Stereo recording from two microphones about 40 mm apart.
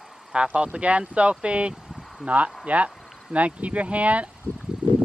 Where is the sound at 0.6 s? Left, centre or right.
Right.